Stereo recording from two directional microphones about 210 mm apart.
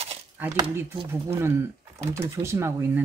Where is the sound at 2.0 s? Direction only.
15° right (ahead or behind).